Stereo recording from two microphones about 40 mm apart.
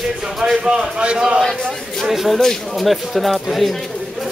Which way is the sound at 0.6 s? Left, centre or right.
Right.